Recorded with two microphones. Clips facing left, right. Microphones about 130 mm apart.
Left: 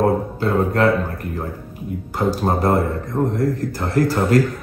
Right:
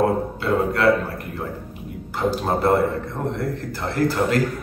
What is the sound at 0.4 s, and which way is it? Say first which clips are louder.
Speech: left 3 dB; 40° left (ahead or behind).